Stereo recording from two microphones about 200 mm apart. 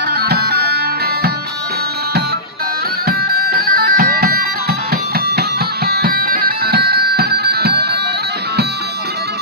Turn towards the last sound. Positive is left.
turn(degrees=-55)  # may be behind; listen again after turning